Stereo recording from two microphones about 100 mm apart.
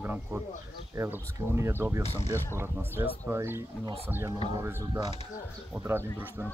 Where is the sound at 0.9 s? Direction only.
25° right (ahead or behind).